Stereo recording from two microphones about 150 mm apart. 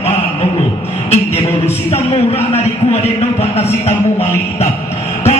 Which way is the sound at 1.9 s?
45° left (ahead or behind).